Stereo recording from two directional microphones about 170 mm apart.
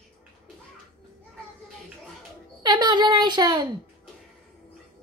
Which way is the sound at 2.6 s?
25° right (ahead or behind).